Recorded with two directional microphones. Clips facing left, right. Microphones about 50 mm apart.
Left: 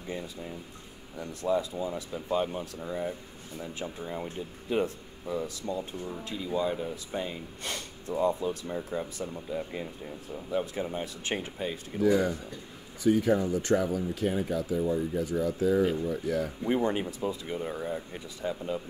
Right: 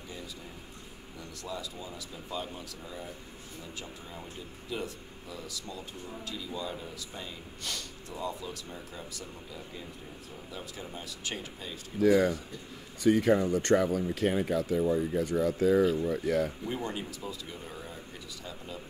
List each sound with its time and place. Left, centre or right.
1.2 s speech: left
13.0 s speech: right
16.6 s speech: left